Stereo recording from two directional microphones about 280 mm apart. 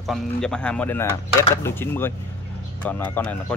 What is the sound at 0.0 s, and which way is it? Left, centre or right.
Speech, centre.